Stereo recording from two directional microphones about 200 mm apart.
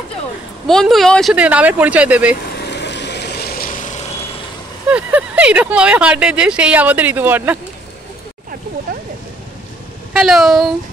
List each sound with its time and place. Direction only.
0.7 s speech: centre (ahead or behind)
2.5 s vehicle: 55° left (ahead or behind); by 4.0 s 40° left (ahead or behind)
4.9 s speech: 5° right (ahead or behind)
10.1 s speech: centre (ahead or behind)